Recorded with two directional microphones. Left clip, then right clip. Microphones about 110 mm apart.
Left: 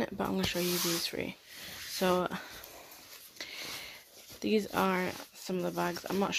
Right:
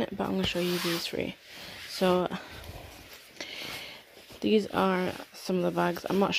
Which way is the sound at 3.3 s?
35° right (ahead or behind).